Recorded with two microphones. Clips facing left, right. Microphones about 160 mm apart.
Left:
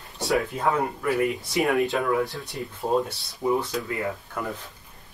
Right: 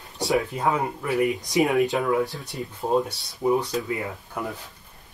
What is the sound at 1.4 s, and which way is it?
Speech, 15° right (ahead or behind).